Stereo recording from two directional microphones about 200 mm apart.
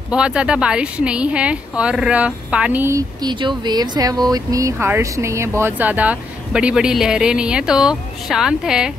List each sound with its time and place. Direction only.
0.1 s a woman's voice: 5° right (ahead or behind)